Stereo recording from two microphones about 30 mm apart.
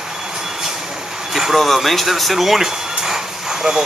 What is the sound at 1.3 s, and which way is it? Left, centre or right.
Speech, centre.